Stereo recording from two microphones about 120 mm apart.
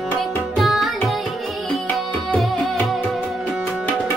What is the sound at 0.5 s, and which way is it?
Tabla, centre (ahead or behind).